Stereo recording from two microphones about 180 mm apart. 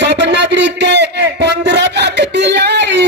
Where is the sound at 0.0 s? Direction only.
70° right (ahead or behind).